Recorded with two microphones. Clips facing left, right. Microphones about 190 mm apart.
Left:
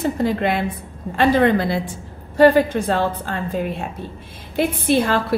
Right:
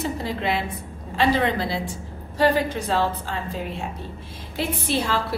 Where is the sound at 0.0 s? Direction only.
50° left (ahead or behind).